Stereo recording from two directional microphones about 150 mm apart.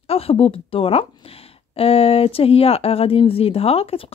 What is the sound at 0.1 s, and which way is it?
Speech, 40° left (ahead or behind).